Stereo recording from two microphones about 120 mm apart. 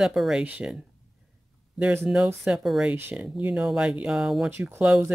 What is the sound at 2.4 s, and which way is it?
Speech, 5° right (ahead or behind).